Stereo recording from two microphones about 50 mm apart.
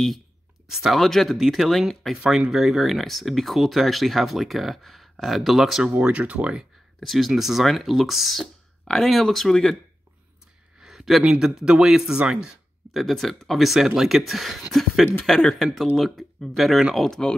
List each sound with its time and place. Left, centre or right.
0.7 s speech: centre
6.0 s speech: right
7.0 s speech: centre
10.8 s a sound: centre
11.4 s speech: centre
12.9 s speech: centre
17.1 s speech: centre